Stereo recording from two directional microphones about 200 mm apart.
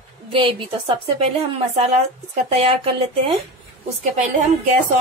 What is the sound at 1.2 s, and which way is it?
A woman's voice, 30° right (ahead or behind).